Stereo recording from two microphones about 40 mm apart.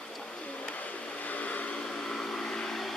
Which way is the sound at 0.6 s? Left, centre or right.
Left.